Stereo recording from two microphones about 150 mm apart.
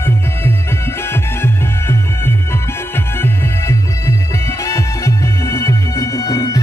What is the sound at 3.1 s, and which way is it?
Music, 15° left (ahead or behind).